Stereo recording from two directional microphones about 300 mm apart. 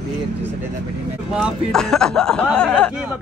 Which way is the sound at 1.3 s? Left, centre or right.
Centre.